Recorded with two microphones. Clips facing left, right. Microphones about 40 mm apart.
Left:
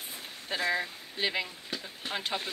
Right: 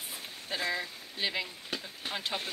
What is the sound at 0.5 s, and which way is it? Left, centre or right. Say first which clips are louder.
Speech: left 3 dB; left.